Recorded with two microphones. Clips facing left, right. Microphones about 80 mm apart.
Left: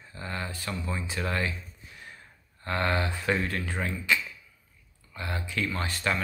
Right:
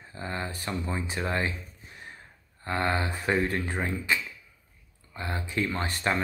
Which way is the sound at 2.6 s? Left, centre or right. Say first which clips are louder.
Even; right.